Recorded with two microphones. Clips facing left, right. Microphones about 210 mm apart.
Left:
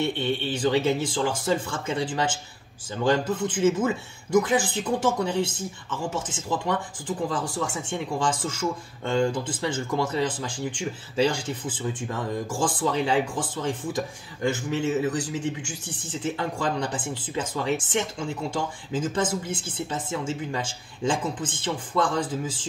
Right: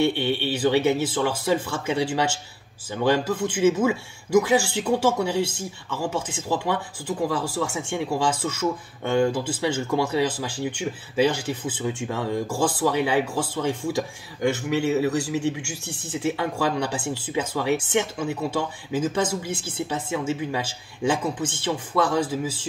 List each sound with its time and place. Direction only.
0.0 s speech: 70° right (ahead or behind)
0.8 s speech: 5° right (ahead or behind)
14.5 s speech: 70° right (ahead or behind)
15.0 s speech: 10° right (ahead or behind)
15.3 s speech: 70° right (ahead or behind)
16.1 s speech: 10° right (ahead or behind)